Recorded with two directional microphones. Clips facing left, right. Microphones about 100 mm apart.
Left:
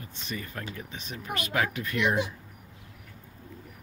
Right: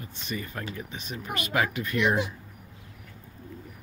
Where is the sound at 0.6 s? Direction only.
10° right (ahead or behind).